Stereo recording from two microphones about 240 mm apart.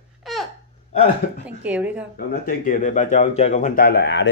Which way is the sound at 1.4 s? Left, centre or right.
Centre.